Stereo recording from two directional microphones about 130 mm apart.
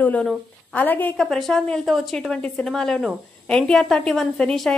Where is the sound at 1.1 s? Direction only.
Centre (ahead or behind).